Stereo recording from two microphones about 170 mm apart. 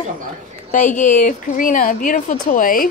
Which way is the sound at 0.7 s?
50° left (ahead or behind).